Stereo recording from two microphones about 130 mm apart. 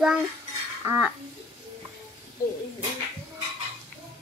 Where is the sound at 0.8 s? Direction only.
20° right (ahead or behind).